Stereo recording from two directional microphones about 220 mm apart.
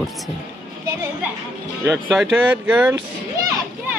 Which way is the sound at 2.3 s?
5° right (ahead or behind).